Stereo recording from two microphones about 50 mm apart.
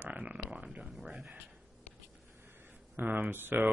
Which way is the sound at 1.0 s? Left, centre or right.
Centre.